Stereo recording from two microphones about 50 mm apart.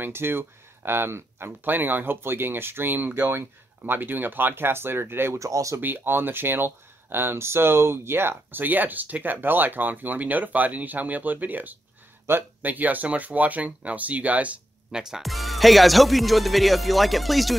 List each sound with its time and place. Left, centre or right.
0.0 s speech: right
5.3 s speech: right
5.8 s speech: right
12.3 s speech: right
12.6 s speech: right
14.9 s speech: centre
15.2 s speech: centre